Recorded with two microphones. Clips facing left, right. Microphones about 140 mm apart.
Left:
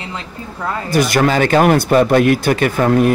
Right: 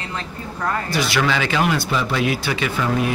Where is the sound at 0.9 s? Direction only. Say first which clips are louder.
Left 9 dB; 50° left (ahead or behind).